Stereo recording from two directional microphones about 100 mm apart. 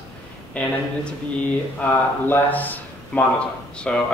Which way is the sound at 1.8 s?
20° left (ahead or behind).